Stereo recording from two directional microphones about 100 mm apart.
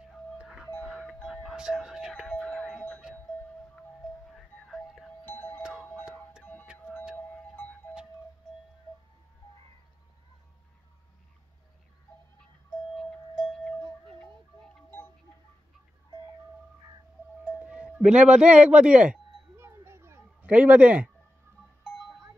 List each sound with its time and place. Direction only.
0.4 s doorbell: 5° right (ahead or behind)
4.4 s music: 5° left (ahead or behind)
5.2 s doorbell: 20° left (ahead or behind)
5.6 s emergency vehicle: 5° right (ahead or behind)
6.4 s music: 15° left (ahead or behind)
12.9 s a sound: 5° left (ahead or behind)
17.5 s speech: 10° right (ahead or behind)
19.6 s a sound: 25° right (ahead or behind)
20.4 s speech: 15° right (ahead or behind)